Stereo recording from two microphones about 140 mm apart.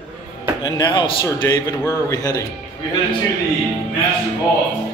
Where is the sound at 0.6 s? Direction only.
35° left (ahead or behind).